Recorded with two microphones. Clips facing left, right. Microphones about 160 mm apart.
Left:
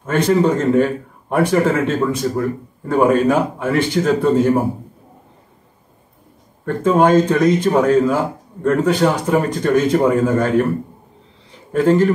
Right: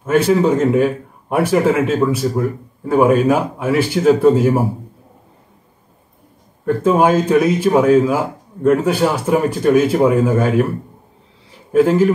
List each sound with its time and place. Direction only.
0.0 s speech: 5° right (ahead or behind)
6.6 s speech: 10° right (ahead or behind)
11.7 s speech: 5° right (ahead or behind)